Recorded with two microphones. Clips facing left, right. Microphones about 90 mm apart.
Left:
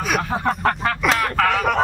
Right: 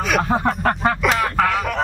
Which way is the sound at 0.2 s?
35° right (ahead or behind).